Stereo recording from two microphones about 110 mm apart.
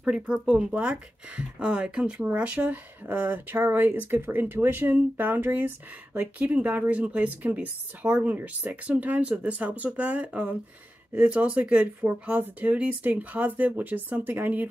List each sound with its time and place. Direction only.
0.0 s speech: 10° right (ahead or behind)